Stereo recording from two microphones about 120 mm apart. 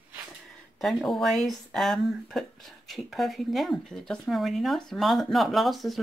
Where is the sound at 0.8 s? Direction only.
Centre (ahead or behind).